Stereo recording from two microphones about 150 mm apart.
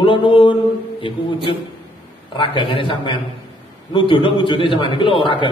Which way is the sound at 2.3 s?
35° left (ahead or behind).